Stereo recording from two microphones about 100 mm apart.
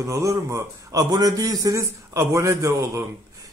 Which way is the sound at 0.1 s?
30° right (ahead or behind).